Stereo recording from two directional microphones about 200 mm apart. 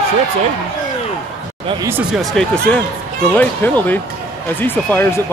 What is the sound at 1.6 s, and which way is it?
Speech, 15° right (ahead or behind).